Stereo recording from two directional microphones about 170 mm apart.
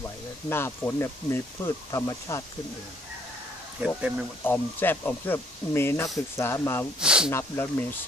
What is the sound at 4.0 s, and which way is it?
Speech, 10° right (ahead or behind).